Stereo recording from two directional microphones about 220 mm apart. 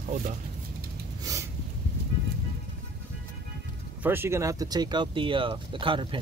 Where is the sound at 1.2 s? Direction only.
15° right (ahead or behind).